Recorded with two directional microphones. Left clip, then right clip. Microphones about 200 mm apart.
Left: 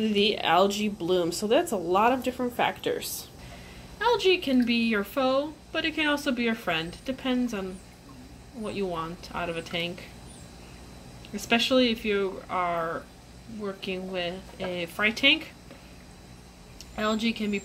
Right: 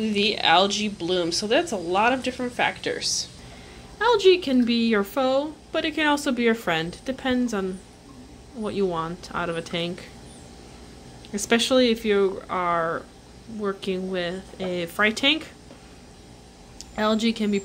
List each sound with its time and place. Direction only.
0.0 s speech: 5° right (ahead or behind)
4.0 s a woman's voice: 15° right (ahead or behind)
8.6 s a woman's voice: 15° right (ahead or behind)
11.3 s a woman's voice: 15° right (ahead or behind)
16.9 s a woman's voice: 15° right (ahead or behind)